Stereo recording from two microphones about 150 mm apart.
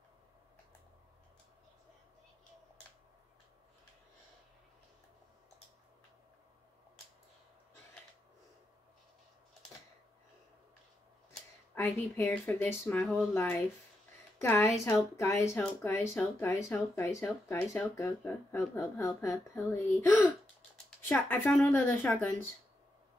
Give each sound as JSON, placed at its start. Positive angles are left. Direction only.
{"t": 11.7, "sound": "a woman's voice", "side_deg": 15}